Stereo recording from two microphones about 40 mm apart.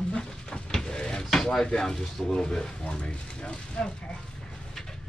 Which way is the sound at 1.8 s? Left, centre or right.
Centre.